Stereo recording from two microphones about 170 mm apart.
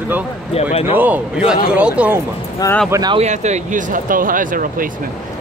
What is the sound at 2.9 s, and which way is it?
Speech, 25° right (ahead or behind).